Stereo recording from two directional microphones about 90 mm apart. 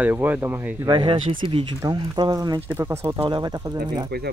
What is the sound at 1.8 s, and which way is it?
Speech, 40° right (ahead or behind).